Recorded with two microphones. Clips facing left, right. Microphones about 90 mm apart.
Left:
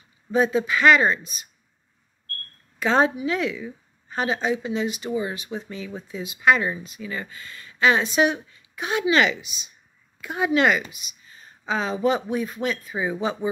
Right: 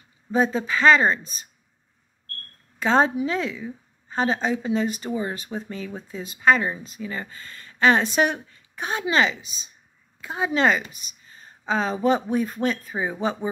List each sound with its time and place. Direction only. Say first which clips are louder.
0.3 s a woman's voice: left 1 dB; 40° right (ahead or behind)
2.8 s a woman's voice: right 1 dB; 35° right (ahead or behind)